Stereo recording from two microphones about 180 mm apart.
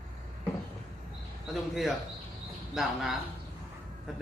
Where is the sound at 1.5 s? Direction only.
Centre (ahead or behind).